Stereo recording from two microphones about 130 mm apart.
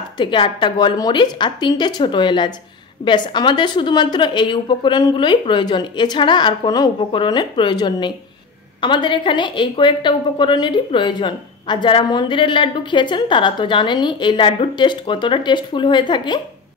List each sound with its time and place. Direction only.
0.2 s a woman's voice: 40° left (ahead or behind)